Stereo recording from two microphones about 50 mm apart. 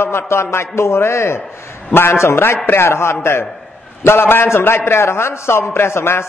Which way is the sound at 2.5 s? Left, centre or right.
Left.